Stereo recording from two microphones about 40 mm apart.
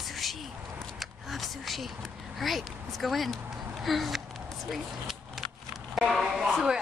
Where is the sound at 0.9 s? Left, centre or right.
Centre.